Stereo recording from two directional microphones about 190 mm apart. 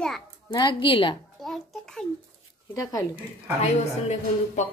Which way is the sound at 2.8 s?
20° left (ahead or behind).